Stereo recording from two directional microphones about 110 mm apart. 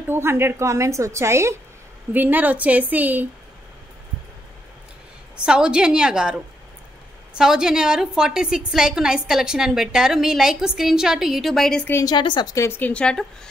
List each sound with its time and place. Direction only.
0.1 s a woman's voice: 20° right (ahead or behind)
5.4 s a woman's voice: 10° right (ahead or behind)
11.9 s a woman's voice: 35° left (ahead or behind)
12.5 s a woman's voice: 20° left (ahead or behind)